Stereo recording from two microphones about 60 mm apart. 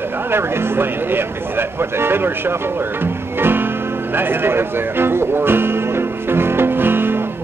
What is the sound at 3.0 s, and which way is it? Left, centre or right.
Music, right.